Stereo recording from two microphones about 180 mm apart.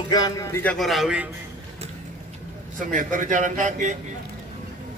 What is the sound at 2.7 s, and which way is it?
A man's voice, 45° right (ahead or behind).